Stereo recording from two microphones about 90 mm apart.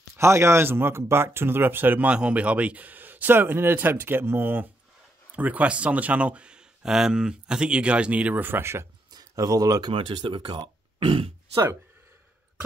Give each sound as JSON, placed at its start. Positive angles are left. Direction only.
{"t": 0.2, "sound": "speech", "side_deg": -30}
{"t": 9.1, "sound": "speech", "side_deg": -40}
{"t": 9.8, "sound": "speech", "side_deg": -65}
{"t": 11.0, "sound": "speech", "side_deg": -90}